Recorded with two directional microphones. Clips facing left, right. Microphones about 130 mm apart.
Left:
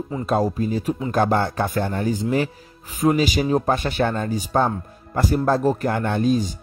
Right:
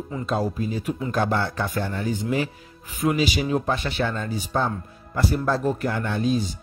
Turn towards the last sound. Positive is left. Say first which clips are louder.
# left 4 dB
turn(degrees=45)  # may be behind; listen again after turning